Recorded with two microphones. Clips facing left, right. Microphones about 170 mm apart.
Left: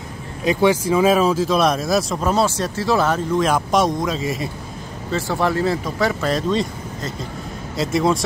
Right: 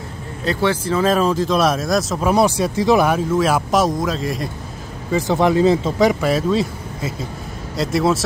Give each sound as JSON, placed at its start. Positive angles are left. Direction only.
{"t": 0.4, "sound": "speech", "side_deg": 15}
{"t": 3.3, "sound": "speech", "side_deg": -5}
{"t": 5.1, "sound": "speech", "side_deg": -20}
{"t": 6.3, "sound": "speech", "side_deg": -5}